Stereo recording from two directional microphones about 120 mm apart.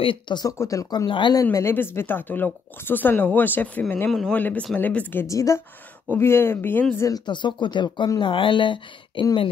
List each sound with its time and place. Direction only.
0.0 s speech: 40° left (ahead or behind)
1.3 s speech: 30° left (ahead or behind)
7.1 s speech: 35° left (ahead or behind)